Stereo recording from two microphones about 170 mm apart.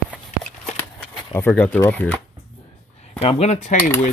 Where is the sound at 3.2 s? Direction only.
40° left (ahead or behind).